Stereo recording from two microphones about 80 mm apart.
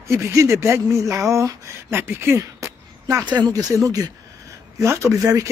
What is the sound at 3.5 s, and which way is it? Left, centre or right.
Speech, right.